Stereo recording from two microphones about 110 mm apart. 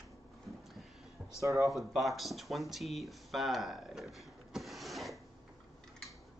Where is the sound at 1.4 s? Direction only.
30° right (ahead or behind).